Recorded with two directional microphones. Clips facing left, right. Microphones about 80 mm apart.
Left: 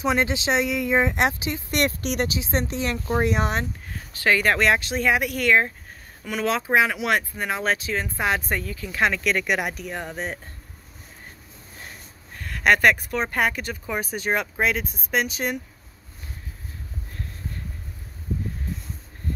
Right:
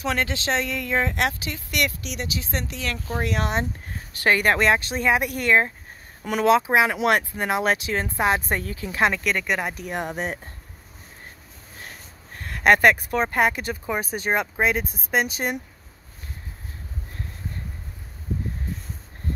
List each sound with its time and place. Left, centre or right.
0.0 s speech: centre
1.8 s speech: left
2.3 s speech: left
4.2 s speech: right
5.0 s speech: right
6.2 s speech: right
6.5 s speech: centre
6.9 s speech: right
9.2 s speech: centre
9.8 s speech: right
12.8 s speech: centre